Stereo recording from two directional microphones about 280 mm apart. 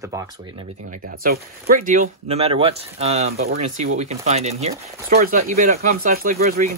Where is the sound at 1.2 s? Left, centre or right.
Right.